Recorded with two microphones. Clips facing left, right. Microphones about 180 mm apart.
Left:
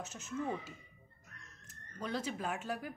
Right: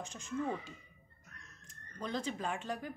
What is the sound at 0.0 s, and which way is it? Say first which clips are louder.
Speech: right 1 dB; 5° left (ahead or behind).